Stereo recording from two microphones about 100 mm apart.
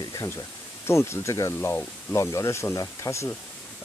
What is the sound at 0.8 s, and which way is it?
Speech, 25° left (ahead or behind).